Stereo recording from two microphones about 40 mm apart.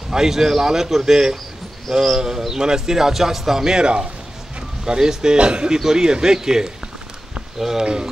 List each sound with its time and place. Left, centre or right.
0.1 s a man's voice: centre
5.8 s a man's voice: centre